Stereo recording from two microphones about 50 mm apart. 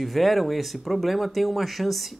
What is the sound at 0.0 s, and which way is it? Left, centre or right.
Speech, centre.